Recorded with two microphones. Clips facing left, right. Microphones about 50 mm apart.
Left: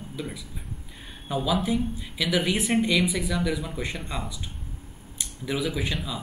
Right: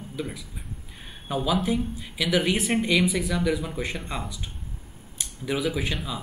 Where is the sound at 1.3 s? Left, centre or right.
Centre.